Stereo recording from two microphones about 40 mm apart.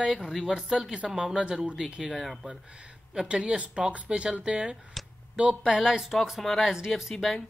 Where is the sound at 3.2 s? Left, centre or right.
Right.